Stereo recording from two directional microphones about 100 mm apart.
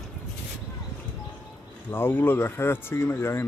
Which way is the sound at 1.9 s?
20° left (ahead or behind).